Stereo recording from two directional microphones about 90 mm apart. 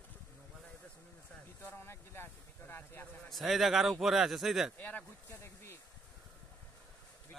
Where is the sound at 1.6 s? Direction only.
25° left (ahead or behind).